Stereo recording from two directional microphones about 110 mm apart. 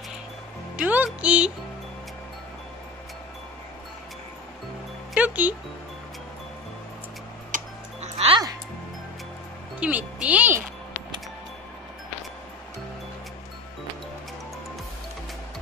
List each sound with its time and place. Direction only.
0.7 s speech: 15° right (ahead or behind)
5.1 s music: 15° right (ahead or behind)
8.0 s music: 75° right (ahead or behind)
9.8 s music: 15° right (ahead or behind)
10.1 s speech: 10° right (ahead or behind)